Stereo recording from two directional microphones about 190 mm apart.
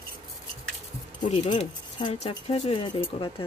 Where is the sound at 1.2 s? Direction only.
30° left (ahead or behind).